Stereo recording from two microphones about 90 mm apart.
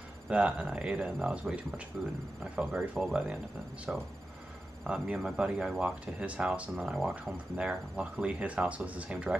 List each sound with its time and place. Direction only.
0.3 s speech: 15° right (ahead or behind)